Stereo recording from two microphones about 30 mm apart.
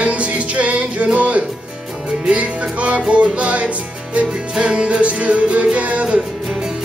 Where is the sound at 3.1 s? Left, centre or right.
Right.